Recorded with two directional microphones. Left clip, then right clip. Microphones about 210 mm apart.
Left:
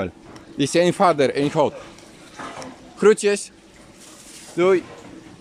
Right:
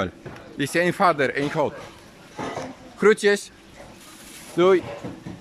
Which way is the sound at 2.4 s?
25° right (ahead or behind).